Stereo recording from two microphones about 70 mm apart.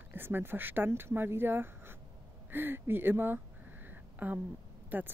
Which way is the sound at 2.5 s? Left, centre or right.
Right.